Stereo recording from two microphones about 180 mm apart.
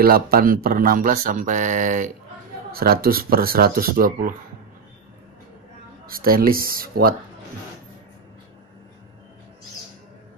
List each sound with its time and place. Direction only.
0.0 s speech: 55° right (ahead or behind)
2.7 s speech: 55° right (ahead or behind)
6.0 s speech: 55° right (ahead or behind)